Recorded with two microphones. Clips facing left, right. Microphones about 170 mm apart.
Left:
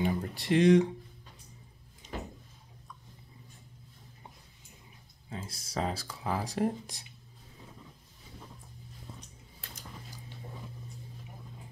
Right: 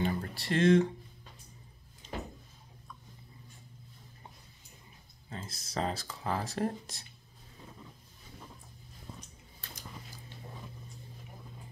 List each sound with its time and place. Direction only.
0.0 s speech: 10° left (ahead or behind)
2.0 s a sound: 15° left (ahead or behind)
5.3 s speech: 10° left (ahead or behind)